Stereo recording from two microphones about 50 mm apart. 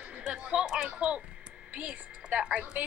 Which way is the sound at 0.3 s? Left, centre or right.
Centre.